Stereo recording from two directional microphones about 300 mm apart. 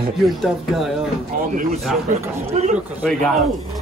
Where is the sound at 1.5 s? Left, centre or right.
Right.